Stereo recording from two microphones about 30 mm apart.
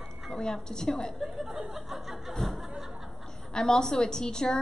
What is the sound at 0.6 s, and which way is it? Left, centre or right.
Speech, left.